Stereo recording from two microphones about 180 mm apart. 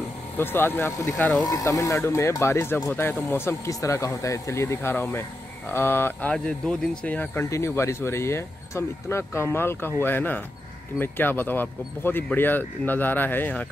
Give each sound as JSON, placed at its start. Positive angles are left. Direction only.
{"t": 0.4, "sound": "speech", "side_deg": 10}
{"t": 1.1, "sound": "speech", "side_deg": 5}
{"t": 1.4, "sound": "speech", "side_deg": 20}